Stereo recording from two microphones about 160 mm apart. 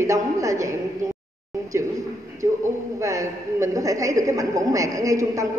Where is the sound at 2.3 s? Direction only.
20° right (ahead or behind).